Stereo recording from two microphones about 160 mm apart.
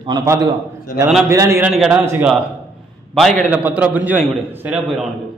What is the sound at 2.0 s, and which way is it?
Speech, 15° right (ahead or behind).